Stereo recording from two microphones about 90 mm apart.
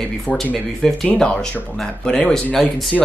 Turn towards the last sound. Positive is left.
turn(degrees=0)  # may be behind; listen again after turning